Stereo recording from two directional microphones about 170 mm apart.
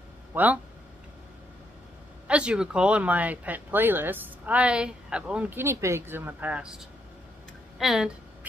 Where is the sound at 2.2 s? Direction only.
5° right (ahead or behind).